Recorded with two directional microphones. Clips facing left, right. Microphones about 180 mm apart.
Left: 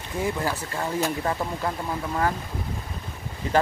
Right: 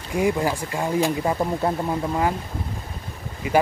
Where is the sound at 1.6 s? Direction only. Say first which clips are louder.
Right 5 dB; 30° right (ahead or behind).